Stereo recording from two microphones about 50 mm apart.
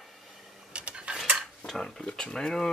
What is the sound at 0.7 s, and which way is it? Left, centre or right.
Cutlery, right.